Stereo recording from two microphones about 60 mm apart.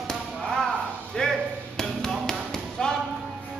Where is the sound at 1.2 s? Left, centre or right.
Centre.